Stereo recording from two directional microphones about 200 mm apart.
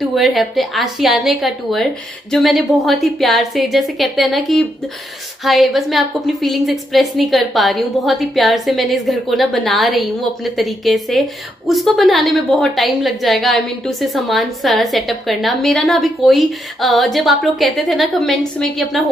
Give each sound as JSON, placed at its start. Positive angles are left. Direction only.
{"t": 0.0, "sound": "a woman's voice", "side_deg": 0}